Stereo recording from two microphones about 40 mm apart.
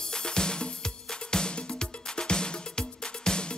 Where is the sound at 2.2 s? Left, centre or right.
Left.